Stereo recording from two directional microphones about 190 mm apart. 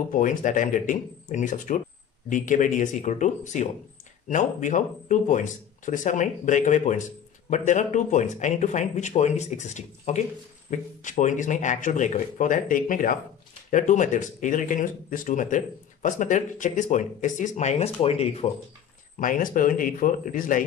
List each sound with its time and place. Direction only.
0.1 s speech: 45° left (ahead or behind)
19.1 s speech: 45° left (ahead or behind)